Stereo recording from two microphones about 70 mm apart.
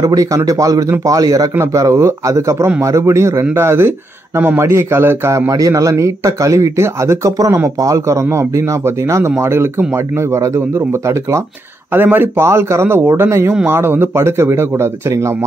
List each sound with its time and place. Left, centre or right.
0.0 s a man's voice: right
3.5 s a man's voice: right
5.5 s a man's voice: right
11.9 s a man's voice: right